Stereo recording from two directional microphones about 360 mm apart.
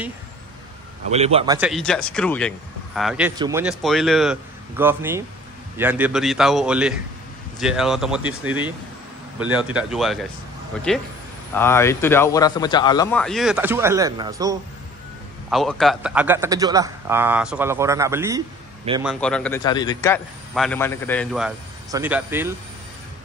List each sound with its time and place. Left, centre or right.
1.1 s speech: centre
15.5 s a man's voice: centre
19.0 s speech: centre